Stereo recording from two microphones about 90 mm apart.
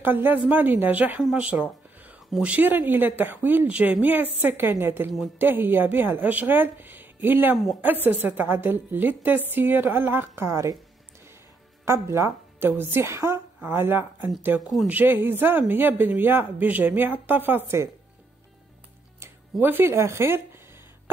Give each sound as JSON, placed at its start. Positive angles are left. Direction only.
{"t": 0.0, "sound": "a woman's voice", "side_deg": -20}
{"t": 1.3, "sound": "a sound", "side_deg": -15}
{"t": 2.4, "sound": "a woman's voice", "side_deg": -15}
{"t": 11.8, "sound": "a woman's voice", "side_deg": -30}
{"t": 19.6, "sound": "a woman's voice", "side_deg": -25}